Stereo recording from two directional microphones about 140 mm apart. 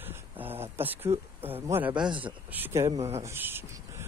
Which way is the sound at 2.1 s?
35° right (ahead or behind).